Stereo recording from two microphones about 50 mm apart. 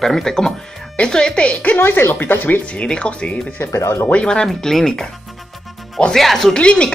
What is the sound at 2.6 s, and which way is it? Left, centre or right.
Speech, left.